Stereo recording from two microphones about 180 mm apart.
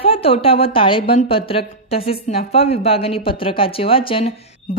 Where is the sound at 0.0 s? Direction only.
30° left (ahead or behind).